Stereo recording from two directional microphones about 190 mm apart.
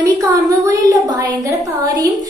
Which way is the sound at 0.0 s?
15° right (ahead or behind).